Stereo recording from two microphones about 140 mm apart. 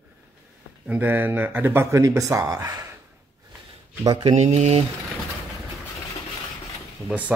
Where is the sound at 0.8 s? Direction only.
15° right (ahead or behind).